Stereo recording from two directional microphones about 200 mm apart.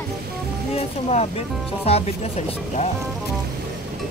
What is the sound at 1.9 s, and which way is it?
Speech, 30° left (ahead or behind).